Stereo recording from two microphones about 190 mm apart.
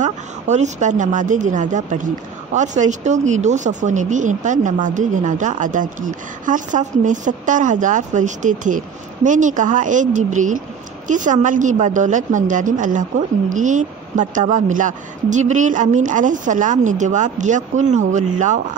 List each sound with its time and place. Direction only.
0.0 s speech: 40° right (ahead or behind)